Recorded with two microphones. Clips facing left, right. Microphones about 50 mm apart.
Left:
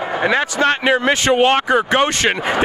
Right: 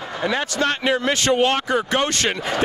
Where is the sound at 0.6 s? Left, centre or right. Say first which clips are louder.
Left 4 dB; left.